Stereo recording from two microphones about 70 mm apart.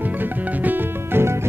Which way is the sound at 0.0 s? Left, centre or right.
Right.